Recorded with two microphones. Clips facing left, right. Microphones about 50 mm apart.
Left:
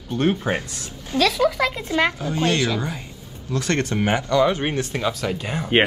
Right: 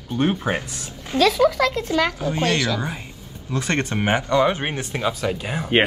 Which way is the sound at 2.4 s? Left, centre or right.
Left.